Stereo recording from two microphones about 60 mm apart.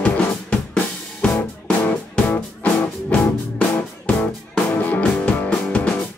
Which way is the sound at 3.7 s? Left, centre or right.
Left.